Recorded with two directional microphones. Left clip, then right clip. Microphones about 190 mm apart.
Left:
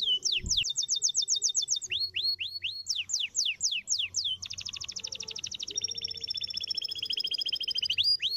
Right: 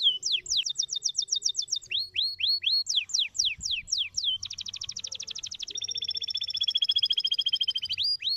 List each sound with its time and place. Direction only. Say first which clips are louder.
0.2 s chirp: right 1 dB; 25° right (ahead or behind)
6.4 s a sound: right 12 dB; 25° right (ahead or behind)
7.6 s bird: even; 20° right (ahead or behind)